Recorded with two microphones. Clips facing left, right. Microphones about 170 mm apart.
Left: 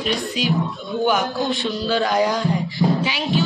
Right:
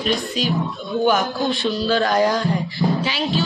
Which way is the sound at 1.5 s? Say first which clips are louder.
Right 2 dB; 15° left (ahead or behind).